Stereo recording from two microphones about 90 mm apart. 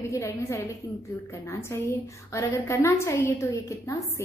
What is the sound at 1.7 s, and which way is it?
A woman's voice, 30° left (ahead or behind).